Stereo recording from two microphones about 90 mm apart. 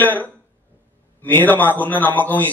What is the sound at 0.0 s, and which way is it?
Throat clearing, 20° left (ahead or behind).